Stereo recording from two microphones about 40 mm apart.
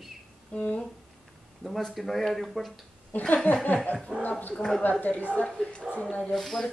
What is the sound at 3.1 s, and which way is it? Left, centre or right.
Speech, left.